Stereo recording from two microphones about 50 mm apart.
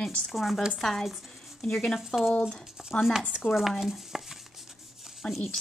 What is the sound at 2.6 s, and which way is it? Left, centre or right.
Speech, centre.